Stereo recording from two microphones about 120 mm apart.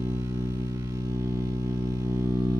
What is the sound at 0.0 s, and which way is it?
Music, 25° right (ahead or behind).